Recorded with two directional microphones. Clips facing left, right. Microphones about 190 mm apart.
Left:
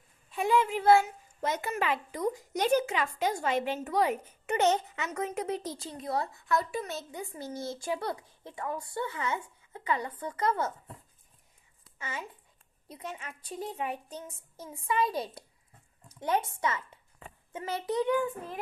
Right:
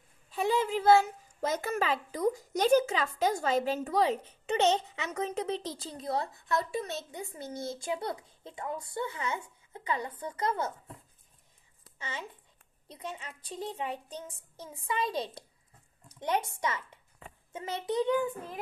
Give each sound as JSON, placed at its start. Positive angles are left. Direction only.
{"t": 0.3, "sound": "a child's voice", "side_deg": -35}
{"t": 11.8, "sound": "a sound", "side_deg": -30}
{"t": 12.9, "sound": "a child's voice", "side_deg": -30}
{"t": 14.7, "sound": "a child's voice", "side_deg": -20}